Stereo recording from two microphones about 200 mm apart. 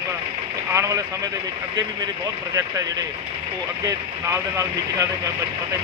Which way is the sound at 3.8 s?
15° right (ahead or behind).